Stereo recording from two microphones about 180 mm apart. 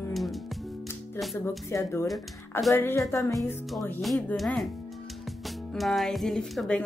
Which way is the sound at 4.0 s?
5° left (ahead or behind).